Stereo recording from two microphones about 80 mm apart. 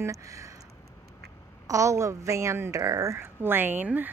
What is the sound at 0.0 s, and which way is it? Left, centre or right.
Speech, right.